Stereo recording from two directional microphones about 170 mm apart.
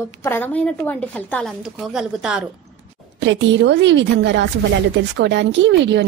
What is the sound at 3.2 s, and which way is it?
Speech, 90° right.